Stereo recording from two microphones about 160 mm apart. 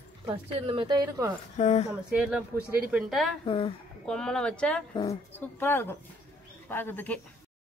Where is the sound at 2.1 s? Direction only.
5° right (ahead or behind).